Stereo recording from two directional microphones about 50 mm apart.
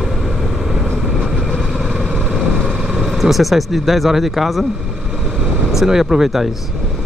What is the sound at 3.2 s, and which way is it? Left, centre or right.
Speech, centre.